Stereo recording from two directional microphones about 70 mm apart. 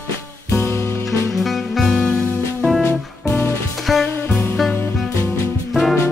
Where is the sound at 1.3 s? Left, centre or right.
Centre.